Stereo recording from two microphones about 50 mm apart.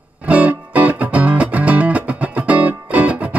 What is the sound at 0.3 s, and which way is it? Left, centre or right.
Music, right.